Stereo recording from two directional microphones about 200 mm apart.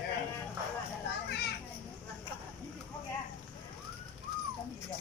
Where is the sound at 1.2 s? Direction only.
55° left (ahead or behind).